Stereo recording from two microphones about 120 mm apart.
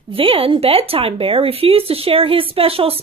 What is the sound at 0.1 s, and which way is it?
Speech, 50° right (ahead or behind).